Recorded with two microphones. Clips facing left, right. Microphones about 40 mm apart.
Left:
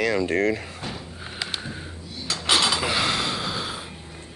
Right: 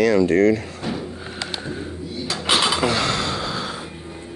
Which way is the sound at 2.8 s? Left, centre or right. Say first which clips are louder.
Right 3 dB; centre.